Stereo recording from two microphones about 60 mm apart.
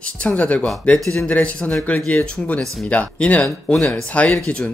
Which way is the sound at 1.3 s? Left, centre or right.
Left.